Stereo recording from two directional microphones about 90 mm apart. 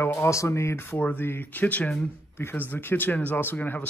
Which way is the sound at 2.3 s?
25° left (ahead or behind).